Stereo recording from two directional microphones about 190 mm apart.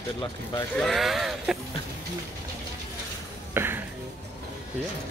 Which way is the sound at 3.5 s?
10° right (ahead or behind).